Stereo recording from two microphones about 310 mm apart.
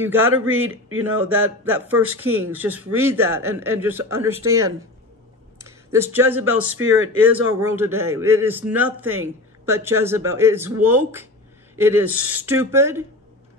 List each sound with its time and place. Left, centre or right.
0.0 s a man's voice: centre
0.5 s a man's voice: right
1.6 s a man's voice: centre
5.6 s speech: centre
6.8 s a man's voice: right
7.2 s a man's voice: centre